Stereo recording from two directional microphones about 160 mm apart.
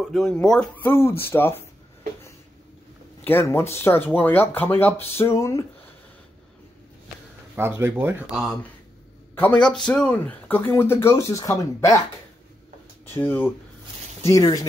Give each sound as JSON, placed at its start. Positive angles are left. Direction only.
{"t": 0.0, "sound": "speech", "side_deg": 0}
{"t": 3.3, "sound": "speech", "side_deg": 15}
{"t": 7.5, "sound": "speech", "side_deg": -15}
{"t": 9.3, "sound": "a man's voice", "side_deg": 10}
{"t": 13.0, "sound": "speech", "side_deg": 10}